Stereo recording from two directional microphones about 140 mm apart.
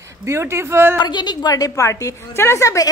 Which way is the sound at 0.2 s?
20° right (ahead or behind).